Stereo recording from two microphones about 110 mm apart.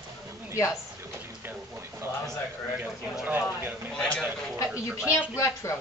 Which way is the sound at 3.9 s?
10° left (ahead or behind).